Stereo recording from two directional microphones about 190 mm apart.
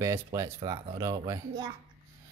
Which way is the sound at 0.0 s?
15° right (ahead or behind).